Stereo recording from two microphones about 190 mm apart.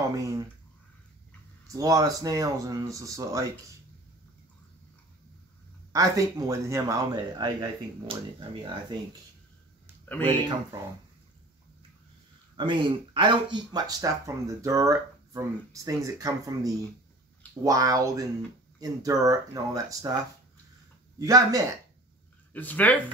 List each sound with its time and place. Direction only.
0.1 s speech: 15° right (ahead or behind)
1.7 s speech: 20° right (ahead or behind)
5.9 s speech: 20° right (ahead or behind)
10.0 s speech: 10° left (ahead or behind)
12.5 s speech: 25° right (ahead or behind)
21.2 s speech: 20° right (ahead or behind)
22.5 s speech: 10° left (ahead or behind)